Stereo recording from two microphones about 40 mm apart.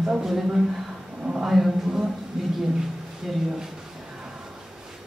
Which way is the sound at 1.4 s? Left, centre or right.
Centre.